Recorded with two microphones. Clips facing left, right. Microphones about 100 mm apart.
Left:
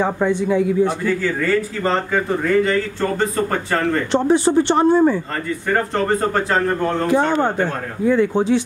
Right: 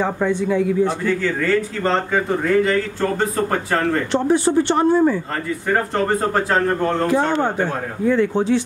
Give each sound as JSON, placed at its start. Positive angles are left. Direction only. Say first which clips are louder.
{"t": 0.0, "sound": "a man's voice", "louder": "left 1 dB", "side_deg": 15}
{"t": 1.0, "sound": "a man's voice", "louder": "even", "side_deg": 5}
{"t": 4.1, "sound": "speech", "louder": "left 2 dB", "side_deg": 25}
{"t": 5.3, "sound": "a man's voice", "louder": "even", "side_deg": -5}
{"t": 7.5, "sound": "speech", "louder": "left 1 dB", "side_deg": -10}
{"t": 8.1, "sound": "a man's voice", "louder": "left 1 dB", "side_deg": 15}